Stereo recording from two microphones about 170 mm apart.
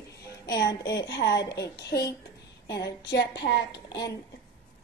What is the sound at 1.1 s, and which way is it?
Speech, 80° left.